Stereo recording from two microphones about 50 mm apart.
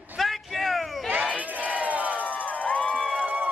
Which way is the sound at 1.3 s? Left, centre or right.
Right.